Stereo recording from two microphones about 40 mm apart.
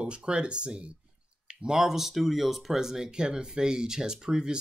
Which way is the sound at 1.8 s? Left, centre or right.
Centre.